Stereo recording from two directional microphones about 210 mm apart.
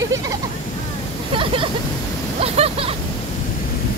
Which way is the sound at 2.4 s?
30° right (ahead or behind).